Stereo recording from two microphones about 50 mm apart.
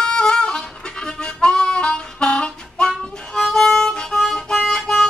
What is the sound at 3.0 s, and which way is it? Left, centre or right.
Music, centre.